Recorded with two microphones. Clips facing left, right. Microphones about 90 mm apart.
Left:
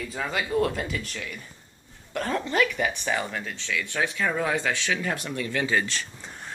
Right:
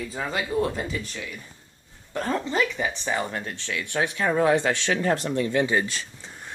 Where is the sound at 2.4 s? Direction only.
20° right (ahead or behind).